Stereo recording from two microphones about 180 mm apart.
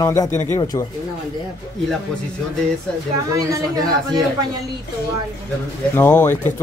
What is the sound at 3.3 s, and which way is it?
Speech, 20° right (ahead or behind).